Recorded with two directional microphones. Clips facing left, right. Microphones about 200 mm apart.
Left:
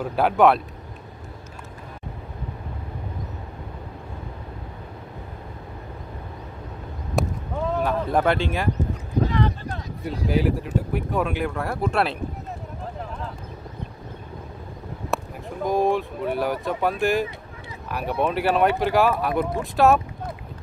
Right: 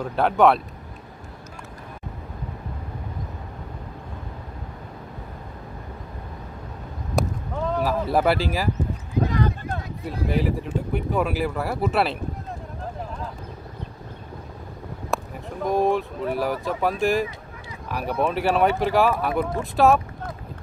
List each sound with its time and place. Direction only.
0.0 s speech: 5° left (ahead or behind)
7.2 s a sound: 5° left (ahead or behind)
9.2 s clip-clop: 45° right (ahead or behind)
10.2 s speech: centre (ahead or behind)
15.1 s a sound: centre (ahead or behind)
15.6 s speech: centre (ahead or behind)